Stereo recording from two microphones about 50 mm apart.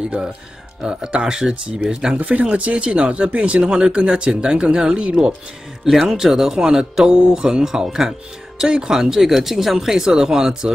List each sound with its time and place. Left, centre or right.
0.8 s speech: centre
2.1 s speech: right
6.1 s speech: centre